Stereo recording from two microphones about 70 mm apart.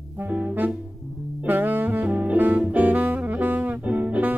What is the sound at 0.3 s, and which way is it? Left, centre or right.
Music, centre.